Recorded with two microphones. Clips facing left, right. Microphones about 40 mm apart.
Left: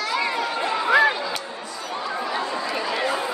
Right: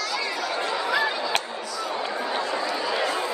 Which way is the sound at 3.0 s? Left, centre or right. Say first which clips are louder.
Left 1 dB; left.